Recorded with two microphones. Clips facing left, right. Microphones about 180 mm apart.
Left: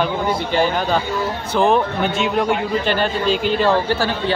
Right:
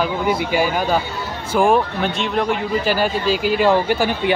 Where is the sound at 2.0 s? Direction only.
Centre (ahead or behind); by 4.3 s 15° right (ahead or behind).